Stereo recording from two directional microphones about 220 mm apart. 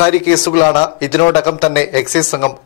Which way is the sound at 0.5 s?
30° left (ahead or behind).